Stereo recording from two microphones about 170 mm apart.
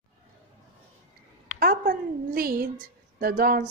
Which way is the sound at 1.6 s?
60° right (ahead or behind).